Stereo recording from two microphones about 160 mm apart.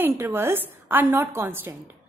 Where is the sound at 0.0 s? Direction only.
15° right (ahead or behind).